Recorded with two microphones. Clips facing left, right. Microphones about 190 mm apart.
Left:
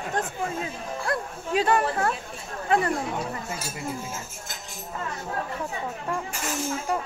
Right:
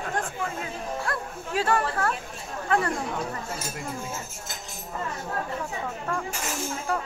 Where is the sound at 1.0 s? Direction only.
20° left (ahead or behind).